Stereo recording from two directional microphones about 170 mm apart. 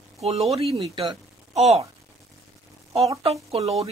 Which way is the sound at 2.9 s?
35° right (ahead or behind).